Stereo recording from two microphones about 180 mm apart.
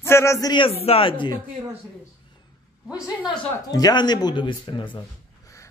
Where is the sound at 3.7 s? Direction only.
20° left (ahead or behind).